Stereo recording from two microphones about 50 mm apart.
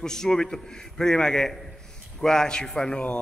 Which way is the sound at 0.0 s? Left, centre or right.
Centre.